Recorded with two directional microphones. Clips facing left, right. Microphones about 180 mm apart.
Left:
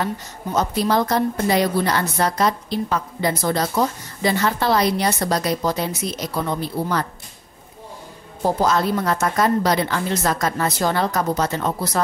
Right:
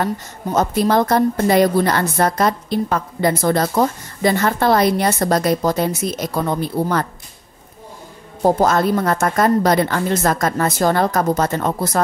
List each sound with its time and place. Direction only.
0.0 s a woman's voice: 50° right (ahead or behind)
8.5 s a woman's voice: 50° right (ahead or behind)